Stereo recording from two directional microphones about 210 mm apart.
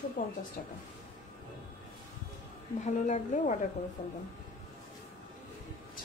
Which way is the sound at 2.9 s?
35° left (ahead or behind).